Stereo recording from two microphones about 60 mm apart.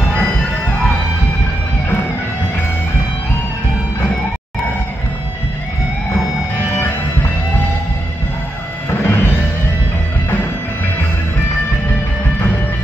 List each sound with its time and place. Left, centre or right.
0.1 s music: left
8.9 s music: left